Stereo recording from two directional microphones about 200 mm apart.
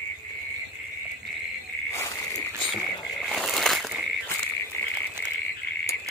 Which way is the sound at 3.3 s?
Centre (ahead or behind).